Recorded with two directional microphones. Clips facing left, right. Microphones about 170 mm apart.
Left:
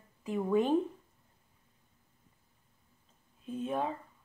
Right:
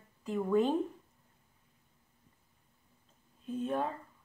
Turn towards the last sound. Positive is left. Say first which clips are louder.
# even
turn(degrees=5)  # may be behind; listen again after turning